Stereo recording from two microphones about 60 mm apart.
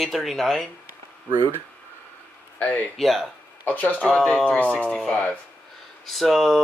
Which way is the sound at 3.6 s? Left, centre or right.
Left.